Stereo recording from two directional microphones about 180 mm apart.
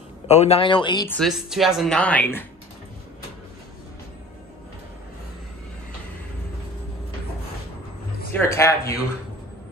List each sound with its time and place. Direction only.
0.3 s a man's voice: 35° left (ahead or behind)
1.0 s speech: 10° left (ahead or behind)
8.3 s speech: 15° left (ahead or behind)